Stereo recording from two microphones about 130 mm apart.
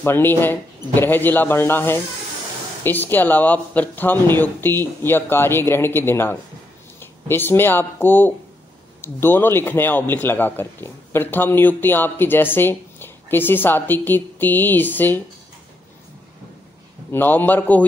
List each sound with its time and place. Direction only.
0.0 s a man's voice: 15° left (ahead or behind)
17.1 s a man's voice: 15° left (ahead or behind)